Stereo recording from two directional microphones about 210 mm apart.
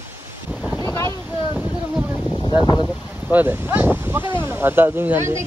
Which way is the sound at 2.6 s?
20° left (ahead or behind).